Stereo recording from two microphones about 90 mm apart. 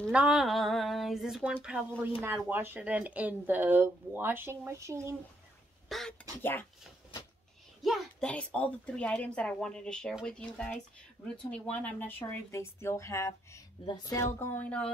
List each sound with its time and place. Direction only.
0.1 s a sound: 15° right (ahead or behind)
0.4 s speech: centre (ahead or behind)
2.0 s speech: 20° right (ahead or behind)
5.9 s a sound: centre (ahead or behind)
6.4 s speech: 20° left (ahead or behind)
7.8 s a sound: centre (ahead or behind)
8.2 s speech: 15° left (ahead or behind); by 13.6 s 35° left (ahead or behind)
13.8 s speech: 45° left (ahead or behind)
14.2 s speech: 30° left (ahead or behind)
14.6 s speech: 10° left (ahead or behind)